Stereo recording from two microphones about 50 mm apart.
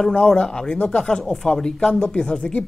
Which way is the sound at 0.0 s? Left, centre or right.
Centre.